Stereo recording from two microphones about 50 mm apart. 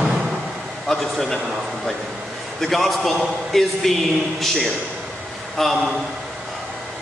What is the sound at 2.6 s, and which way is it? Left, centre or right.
Speech, centre.